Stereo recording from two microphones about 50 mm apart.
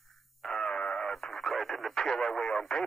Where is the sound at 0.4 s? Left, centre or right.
Centre.